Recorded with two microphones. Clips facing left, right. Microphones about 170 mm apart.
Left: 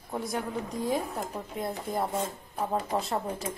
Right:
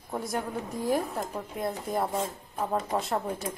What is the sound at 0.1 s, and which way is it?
Speech, centre (ahead or behind).